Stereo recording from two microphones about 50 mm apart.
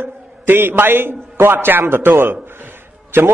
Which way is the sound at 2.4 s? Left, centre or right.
Right.